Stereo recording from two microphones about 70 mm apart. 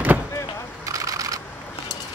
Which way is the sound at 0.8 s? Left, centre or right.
Right.